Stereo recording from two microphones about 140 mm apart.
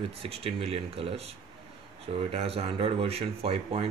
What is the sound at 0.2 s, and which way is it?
Speech, 45° right (ahead or behind).